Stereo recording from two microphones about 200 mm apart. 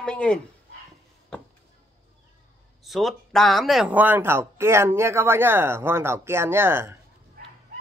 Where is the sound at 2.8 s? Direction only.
Centre (ahead or behind).